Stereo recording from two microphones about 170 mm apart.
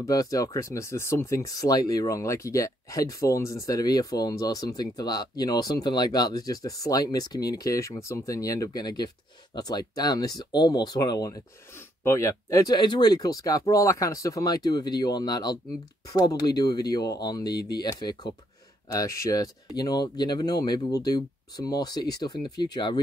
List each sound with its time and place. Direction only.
0.0 s speech: 20° left (ahead or behind)